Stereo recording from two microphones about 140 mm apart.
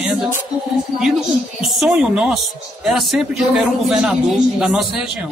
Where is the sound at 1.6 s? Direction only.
Centre (ahead or behind).